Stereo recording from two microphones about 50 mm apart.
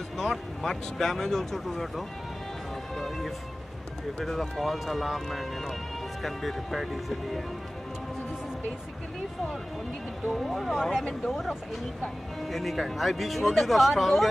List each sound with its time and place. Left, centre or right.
0.2 s speech: centre
10.3 s speech: centre